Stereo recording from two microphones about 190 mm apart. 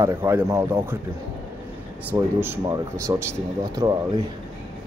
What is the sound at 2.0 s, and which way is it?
Speech, 10° right (ahead or behind).